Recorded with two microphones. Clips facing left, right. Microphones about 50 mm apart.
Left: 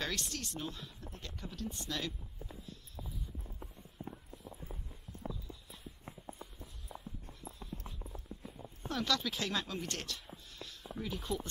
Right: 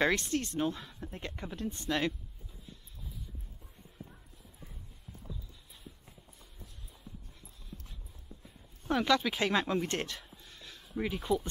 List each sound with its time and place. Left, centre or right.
0.0 s speech: right
4.0 s clip-clop: left
6.9 s a sound: left
8.8 s speech: right
10.3 s a sound: right
11.1 s speech: centre